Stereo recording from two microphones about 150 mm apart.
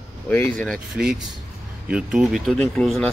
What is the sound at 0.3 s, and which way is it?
Speech, 15° left (ahead or behind).